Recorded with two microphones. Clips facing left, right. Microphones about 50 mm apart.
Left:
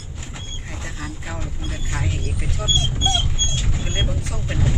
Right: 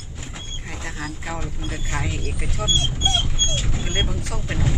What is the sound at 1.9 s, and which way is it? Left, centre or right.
Speech, centre.